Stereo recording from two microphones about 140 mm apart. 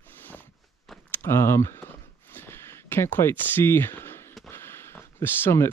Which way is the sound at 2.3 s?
15° left (ahead or behind).